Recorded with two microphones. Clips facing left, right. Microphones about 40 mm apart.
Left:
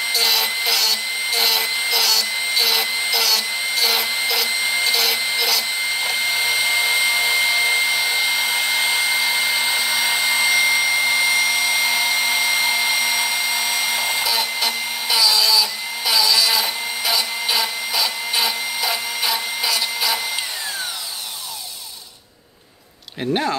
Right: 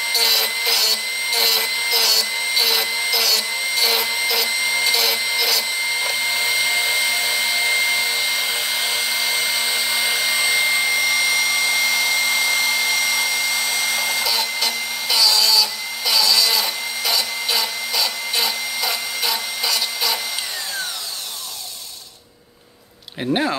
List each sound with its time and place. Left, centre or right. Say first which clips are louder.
0.1 s a sound: even; centre
4.5 s vacuum cleaner: even; centre
14.3 s tools: left 1 dB; centre